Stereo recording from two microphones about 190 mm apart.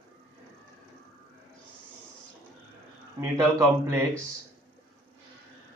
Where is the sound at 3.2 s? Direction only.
15° right (ahead or behind).